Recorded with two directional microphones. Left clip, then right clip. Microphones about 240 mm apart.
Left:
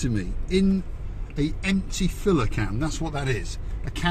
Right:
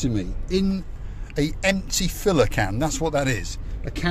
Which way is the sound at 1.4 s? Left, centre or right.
Right.